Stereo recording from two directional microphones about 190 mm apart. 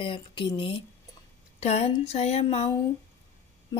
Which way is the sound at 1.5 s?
35° left (ahead or behind).